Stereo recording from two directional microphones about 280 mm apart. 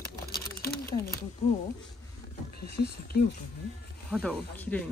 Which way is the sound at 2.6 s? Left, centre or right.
Left.